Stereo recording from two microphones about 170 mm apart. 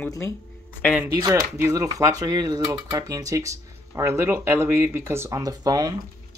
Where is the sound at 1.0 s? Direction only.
20° right (ahead or behind).